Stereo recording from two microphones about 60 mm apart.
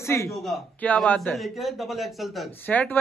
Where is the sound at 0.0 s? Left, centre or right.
Left.